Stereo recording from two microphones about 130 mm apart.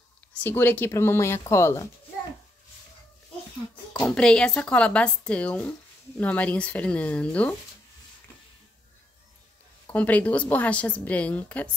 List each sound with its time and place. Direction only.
0.3 s speech: 15° left (ahead or behind)
4.1 s speech: 5° left (ahead or behind)
9.8 s speech: 10° left (ahead or behind)